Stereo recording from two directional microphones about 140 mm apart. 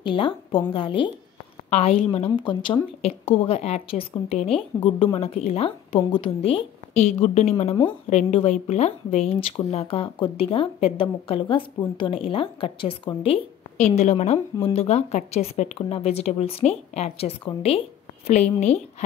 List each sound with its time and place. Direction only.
0.0 s a woman's voice: 35° left (ahead or behind)
1.7 s speech: 50° left (ahead or behind)
3.0 s speech: 45° left (ahead or behind)
13.7 s speech: 55° left (ahead or behind)